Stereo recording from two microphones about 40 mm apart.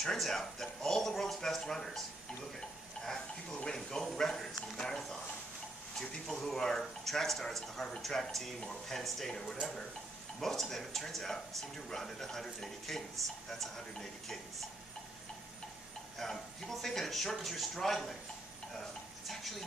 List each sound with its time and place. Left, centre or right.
0.0 s speech: centre
16.2 s speech: centre
19.2 s speech: centre